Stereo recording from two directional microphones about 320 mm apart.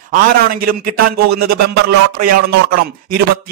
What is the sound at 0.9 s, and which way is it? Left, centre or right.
Speech, right.